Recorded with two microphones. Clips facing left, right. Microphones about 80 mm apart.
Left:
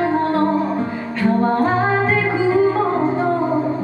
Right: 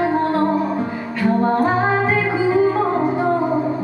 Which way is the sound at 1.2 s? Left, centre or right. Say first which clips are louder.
Even; centre.